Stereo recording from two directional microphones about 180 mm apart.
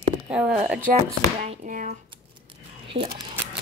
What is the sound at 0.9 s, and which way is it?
Speech, 50° right (ahead or behind).